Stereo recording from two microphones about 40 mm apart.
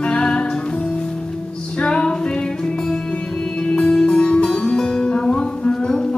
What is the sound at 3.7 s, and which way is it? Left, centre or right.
Music, left.